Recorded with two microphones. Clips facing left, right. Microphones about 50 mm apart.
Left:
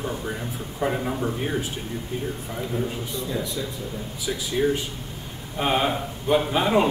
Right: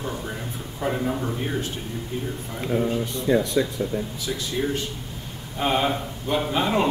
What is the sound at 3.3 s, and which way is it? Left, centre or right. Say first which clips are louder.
Speech: right 10 dB; right.